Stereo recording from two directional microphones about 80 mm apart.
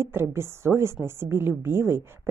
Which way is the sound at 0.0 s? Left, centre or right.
Right.